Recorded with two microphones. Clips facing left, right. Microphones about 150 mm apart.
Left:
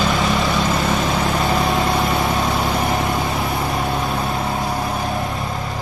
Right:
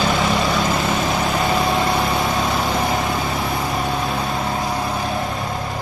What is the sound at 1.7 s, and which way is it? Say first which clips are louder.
Vehicle: even; centre (ahead or behind).